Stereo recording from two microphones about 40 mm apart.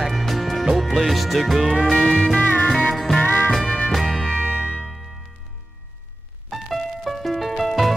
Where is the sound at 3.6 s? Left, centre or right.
Left.